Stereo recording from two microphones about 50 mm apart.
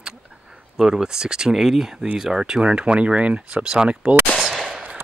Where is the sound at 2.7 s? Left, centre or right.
Right.